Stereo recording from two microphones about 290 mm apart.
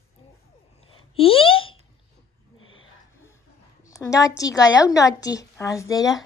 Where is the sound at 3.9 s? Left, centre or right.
Centre.